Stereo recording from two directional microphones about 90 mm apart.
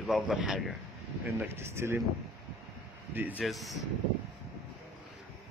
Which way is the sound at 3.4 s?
Centre (ahead or behind).